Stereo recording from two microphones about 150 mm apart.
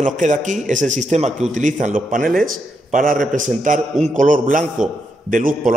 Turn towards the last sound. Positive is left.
turn(degrees=-65)  # may be behind; listen again after turning